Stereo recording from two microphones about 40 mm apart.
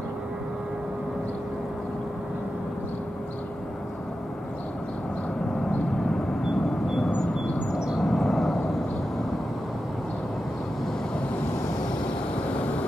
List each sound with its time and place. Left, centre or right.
8.0 s vehicle: centre
12.4 s vehicle: left